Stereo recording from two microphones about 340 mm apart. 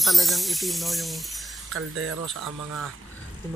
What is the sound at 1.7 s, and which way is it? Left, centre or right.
Speech, right.